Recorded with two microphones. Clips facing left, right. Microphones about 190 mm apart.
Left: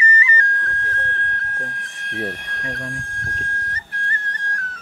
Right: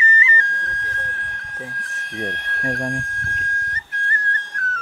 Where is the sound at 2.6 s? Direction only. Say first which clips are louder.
Right 7 dB; 45° right (ahead or behind).